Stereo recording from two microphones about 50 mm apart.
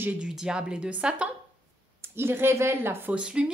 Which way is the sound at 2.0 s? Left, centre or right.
Right.